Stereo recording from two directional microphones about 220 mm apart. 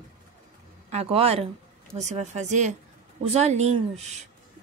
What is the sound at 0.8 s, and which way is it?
A woman's voice, 30° right (ahead or behind).